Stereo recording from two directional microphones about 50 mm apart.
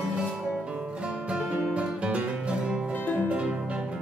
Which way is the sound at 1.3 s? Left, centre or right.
Right.